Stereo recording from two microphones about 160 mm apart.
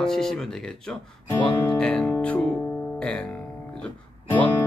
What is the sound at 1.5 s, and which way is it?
Music, 10° left (ahead or behind).